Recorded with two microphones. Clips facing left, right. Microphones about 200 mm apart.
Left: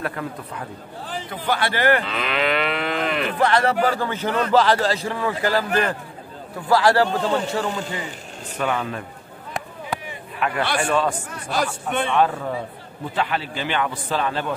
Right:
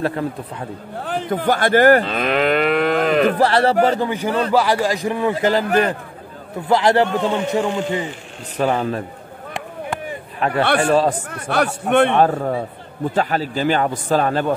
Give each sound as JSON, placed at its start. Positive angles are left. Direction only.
{"t": 0.0, "sound": "a man's voice", "side_deg": -30}
{"t": 1.0, "sound": "moo", "side_deg": -55}
{"t": 4.5, "sound": "a man's voice", "side_deg": -10}
{"t": 5.7, "sound": "a man's voice", "side_deg": -40}
{"t": 6.7, "sound": "a man's voice", "side_deg": -20}
{"t": 8.5, "sound": "a man's voice", "side_deg": -35}
{"t": 10.4, "sound": "a man's voice", "side_deg": -35}
{"t": 11.2, "sound": "a man's voice", "side_deg": -60}
{"t": 12.2, "sound": "moo", "side_deg": -45}